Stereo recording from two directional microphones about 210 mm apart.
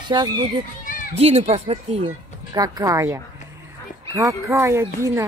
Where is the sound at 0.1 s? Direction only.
20° right (ahead or behind).